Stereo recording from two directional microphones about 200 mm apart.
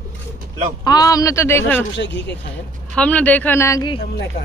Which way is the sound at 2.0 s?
65° left (ahead or behind).